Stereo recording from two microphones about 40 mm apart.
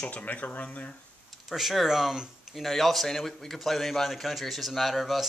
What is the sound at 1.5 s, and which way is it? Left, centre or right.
Speech, centre.